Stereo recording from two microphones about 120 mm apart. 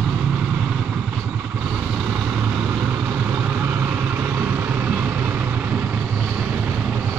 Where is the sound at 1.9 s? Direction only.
10° right (ahead or behind).